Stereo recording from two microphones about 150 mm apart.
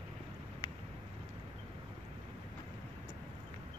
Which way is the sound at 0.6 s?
30° left (ahead or behind).